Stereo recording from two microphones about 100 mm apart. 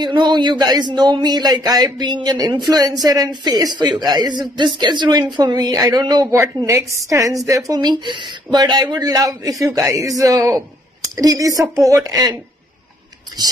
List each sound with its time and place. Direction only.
0.0 s a man's voice: 45° right (ahead or behind)
6.3 s a woman's voice: 25° right (ahead or behind)